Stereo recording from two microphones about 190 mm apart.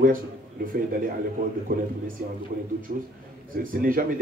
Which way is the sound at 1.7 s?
50° right (ahead or behind).